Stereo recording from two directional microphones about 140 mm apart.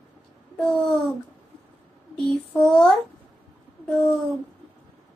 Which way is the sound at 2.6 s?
5° left (ahead or behind).